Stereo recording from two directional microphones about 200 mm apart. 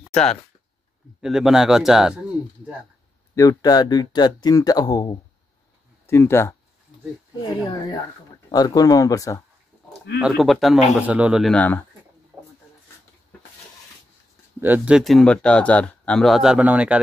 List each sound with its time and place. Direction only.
0.0 s a sound: 5° left (ahead or behind)
1.2 s speech: centre (ahead or behind)
3.3 s speech: 20° left (ahead or behind)
10.3 s speech: centre (ahead or behind)
11.5 s speech: 10° left (ahead or behind)
14.6 s speech: 5° right (ahead or behind)